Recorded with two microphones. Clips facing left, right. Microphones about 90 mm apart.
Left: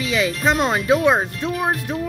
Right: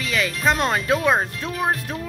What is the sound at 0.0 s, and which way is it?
Speech, 20° left (ahead or behind).